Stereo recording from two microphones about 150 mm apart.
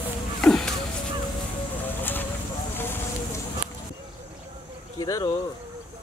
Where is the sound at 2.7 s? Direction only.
15° left (ahead or behind).